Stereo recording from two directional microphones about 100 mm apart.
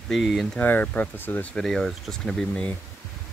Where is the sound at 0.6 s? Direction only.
15° left (ahead or behind).